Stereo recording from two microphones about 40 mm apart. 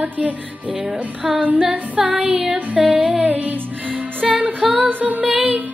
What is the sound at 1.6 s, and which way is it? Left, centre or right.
Music, right.